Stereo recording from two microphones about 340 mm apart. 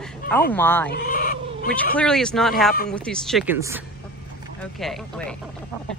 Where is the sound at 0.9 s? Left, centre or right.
Left.